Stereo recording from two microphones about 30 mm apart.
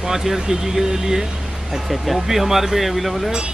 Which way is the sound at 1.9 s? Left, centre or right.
Centre.